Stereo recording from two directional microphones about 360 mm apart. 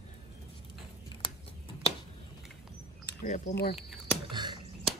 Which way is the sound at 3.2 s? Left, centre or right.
Left.